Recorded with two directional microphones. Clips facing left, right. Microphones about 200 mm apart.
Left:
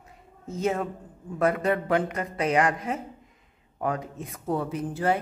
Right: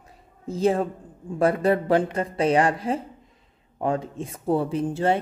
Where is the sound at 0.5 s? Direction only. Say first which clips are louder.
Right 5 dB; 30° right (ahead or behind).